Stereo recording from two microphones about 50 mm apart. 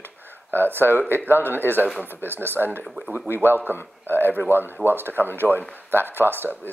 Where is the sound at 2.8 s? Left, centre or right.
Centre.